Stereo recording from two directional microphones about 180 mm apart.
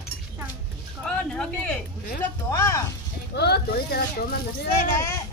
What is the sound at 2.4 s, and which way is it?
Speech, 15° left (ahead or behind).